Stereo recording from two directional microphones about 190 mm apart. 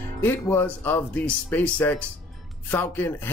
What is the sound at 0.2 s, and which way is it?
Speech, 10° left (ahead or behind).